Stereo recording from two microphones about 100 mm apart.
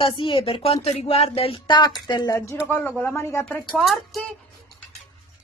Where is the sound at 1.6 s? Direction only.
50° left (ahead or behind).